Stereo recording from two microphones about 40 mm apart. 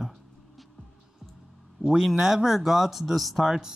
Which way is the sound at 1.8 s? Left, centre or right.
Centre.